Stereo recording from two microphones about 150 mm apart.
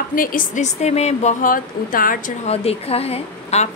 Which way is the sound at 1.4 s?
70° left (ahead or behind).